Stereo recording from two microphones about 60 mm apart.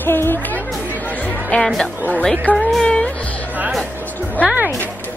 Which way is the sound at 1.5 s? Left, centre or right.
Left.